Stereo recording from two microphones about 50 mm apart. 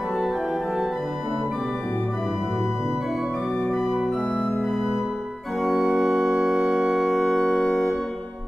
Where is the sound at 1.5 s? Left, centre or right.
Centre.